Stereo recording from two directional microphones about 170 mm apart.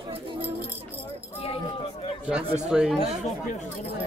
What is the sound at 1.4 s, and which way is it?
Speech, 35° left (ahead or behind).